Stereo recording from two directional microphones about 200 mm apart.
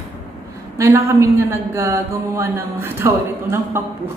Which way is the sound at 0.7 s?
15° right (ahead or behind).